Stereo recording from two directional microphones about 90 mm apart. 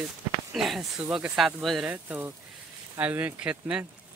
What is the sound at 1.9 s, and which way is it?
Speech, 20° right (ahead or behind).